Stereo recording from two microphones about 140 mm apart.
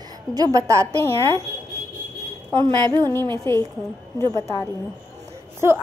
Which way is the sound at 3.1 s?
20° left (ahead or behind).